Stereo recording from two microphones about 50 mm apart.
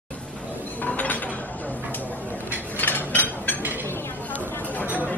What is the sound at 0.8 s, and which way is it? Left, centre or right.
Chink, left.